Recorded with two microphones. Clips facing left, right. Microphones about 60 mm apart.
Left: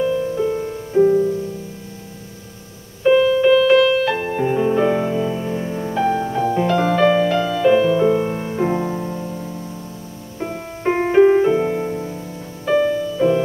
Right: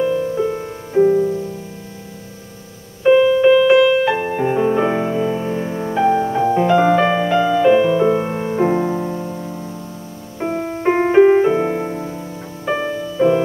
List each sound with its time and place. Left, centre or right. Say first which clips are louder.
0.0 s music: right 1 dB; centre
3.0 s music: right 2 dB; centre